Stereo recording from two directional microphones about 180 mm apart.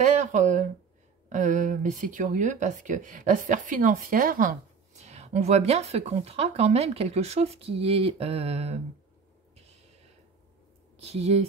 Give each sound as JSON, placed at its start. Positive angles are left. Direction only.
{"t": 0.0, "sound": "speech", "side_deg": -45}
{"t": 9.6, "sound": "a sound", "side_deg": -35}
{"t": 11.0, "sound": "speech", "side_deg": -35}